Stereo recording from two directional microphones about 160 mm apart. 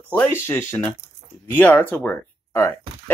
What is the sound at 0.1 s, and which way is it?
Speech, 10° left (ahead or behind).